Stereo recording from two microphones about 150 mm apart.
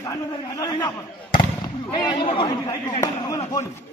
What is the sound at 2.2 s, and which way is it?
Speech, 35° left (ahead or behind).